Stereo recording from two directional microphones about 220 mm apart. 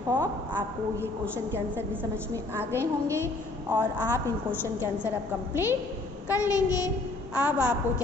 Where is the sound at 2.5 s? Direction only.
10° right (ahead or behind).